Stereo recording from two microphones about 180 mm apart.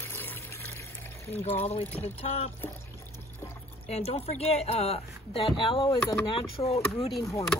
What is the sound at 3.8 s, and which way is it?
A woman's voice, 35° left (ahead or behind).